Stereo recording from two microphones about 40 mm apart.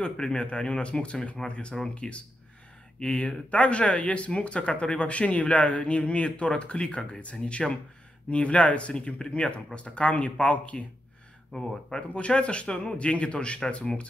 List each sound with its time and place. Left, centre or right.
0.0 s speech: left